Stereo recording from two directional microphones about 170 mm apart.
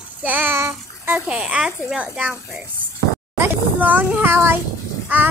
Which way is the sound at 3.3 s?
10° right (ahead or behind).